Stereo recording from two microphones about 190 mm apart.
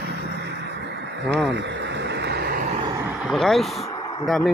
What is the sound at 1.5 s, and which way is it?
Vehicle, 65° right (ahead or behind).